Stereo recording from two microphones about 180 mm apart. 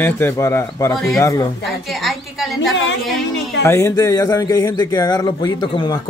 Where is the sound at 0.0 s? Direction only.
10° left (ahead or behind).